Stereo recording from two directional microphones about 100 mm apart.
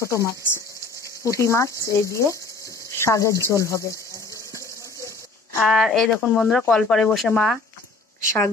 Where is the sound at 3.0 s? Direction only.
30° left (ahead or behind).